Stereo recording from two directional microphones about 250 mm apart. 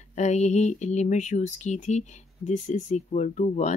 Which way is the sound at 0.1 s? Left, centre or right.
Left.